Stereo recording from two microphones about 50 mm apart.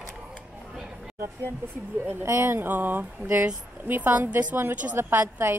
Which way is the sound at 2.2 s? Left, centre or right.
Right.